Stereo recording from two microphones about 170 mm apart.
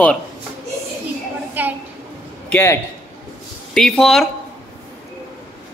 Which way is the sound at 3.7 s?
Centre (ahead or behind).